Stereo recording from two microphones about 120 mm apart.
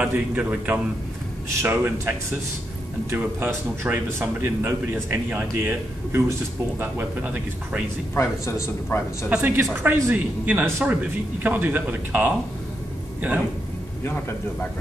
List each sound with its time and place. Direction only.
0.0 s a man's voice: 10° right (ahead or behind)
8.2 s a man's voice: 25° left (ahead or behind)
9.3 s a man's voice: 15° right (ahead or behind)
14.0 s a man's voice: 15° left (ahead or behind)